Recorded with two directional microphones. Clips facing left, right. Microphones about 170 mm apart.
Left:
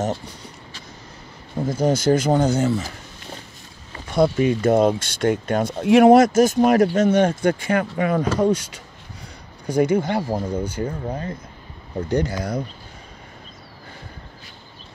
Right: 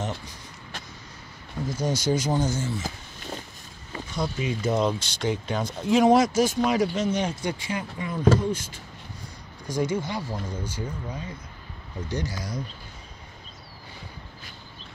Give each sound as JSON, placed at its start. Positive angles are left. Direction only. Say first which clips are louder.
{"t": 1.6, "sound": "speech", "louder": "left 8 dB", "side_deg": 55}
{"t": 4.1, "sound": "speech", "louder": "left 11 dB", "side_deg": 60}
{"t": 9.8, "sound": "speech", "louder": "left 8 dB", "side_deg": 60}